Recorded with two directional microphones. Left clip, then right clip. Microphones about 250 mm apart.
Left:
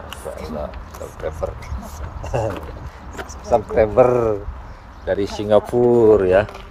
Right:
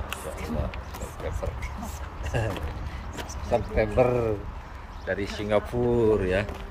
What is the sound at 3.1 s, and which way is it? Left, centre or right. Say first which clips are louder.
Speech: left 9 dB; centre.